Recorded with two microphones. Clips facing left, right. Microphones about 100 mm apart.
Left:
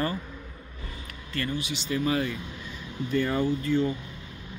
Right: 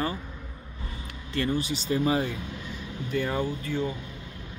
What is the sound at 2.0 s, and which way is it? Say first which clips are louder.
Speech: even; 25° right (ahead or behind).